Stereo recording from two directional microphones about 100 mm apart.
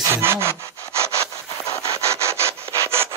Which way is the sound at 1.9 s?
30° right (ahead or behind).